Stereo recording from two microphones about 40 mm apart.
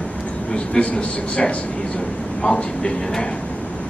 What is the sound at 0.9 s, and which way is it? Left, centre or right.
Speech, left.